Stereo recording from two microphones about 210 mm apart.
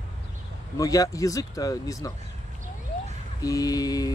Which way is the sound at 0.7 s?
15° left (ahead or behind).